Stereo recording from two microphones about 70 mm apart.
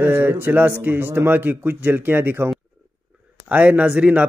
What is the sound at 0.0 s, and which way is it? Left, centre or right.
A man's voice, right.